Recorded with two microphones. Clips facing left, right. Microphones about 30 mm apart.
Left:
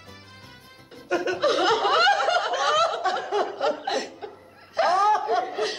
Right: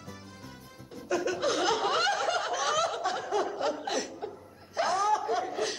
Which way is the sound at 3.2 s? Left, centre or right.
Left.